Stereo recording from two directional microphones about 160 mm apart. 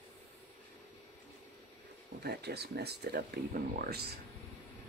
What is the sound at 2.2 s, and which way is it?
Speech, 90° right.